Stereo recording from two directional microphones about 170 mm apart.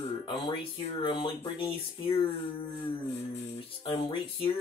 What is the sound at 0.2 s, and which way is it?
Speech, 30° left (ahead or behind).